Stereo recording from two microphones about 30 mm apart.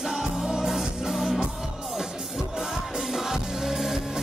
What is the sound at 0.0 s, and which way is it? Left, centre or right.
Music, centre.